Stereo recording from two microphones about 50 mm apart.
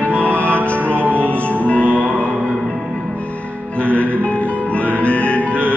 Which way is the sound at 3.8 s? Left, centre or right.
Left.